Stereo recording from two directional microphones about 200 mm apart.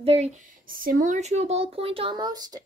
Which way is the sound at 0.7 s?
45° right (ahead or behind).